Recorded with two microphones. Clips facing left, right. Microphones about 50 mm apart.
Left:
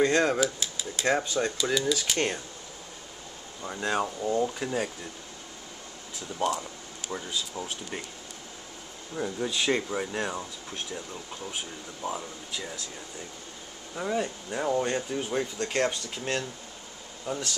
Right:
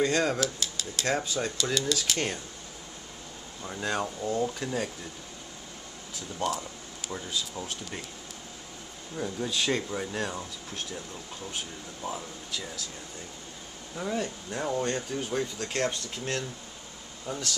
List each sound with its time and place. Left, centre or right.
0.0 s speech: centre
0.4 s speech: centre
3.6 s speech: centre
6.4 s speech: centre
9.1 s speech: centre
13.9 s speech: centre
17.3 s speech: centre